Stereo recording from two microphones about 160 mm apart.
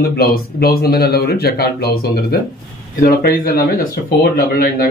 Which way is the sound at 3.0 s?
70° left (ahead or behind).